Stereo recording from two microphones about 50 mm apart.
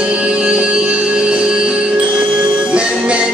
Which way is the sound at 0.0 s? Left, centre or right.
Right.